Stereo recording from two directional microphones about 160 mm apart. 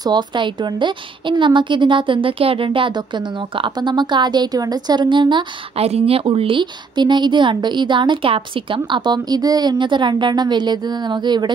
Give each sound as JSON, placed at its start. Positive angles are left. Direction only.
{"t": 0.0, "sound": "speech", "side_deg": -30}